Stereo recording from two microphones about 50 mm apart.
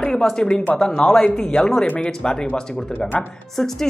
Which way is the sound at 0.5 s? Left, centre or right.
Left.